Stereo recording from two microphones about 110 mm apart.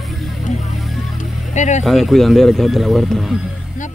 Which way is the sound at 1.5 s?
90° left.